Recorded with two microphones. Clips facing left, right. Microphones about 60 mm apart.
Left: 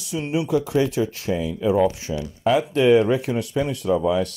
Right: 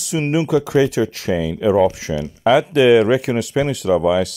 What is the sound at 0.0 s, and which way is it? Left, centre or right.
Speech, right.